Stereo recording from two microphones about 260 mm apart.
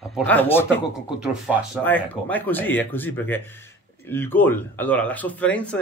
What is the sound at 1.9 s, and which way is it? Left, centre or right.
Speech, centre.